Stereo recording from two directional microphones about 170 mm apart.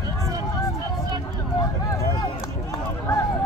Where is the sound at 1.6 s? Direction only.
20° left (ahead or behind).